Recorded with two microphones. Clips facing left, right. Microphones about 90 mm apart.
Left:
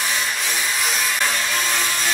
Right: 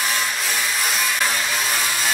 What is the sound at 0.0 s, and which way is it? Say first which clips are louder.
Wood: even; centre (ahead or behind).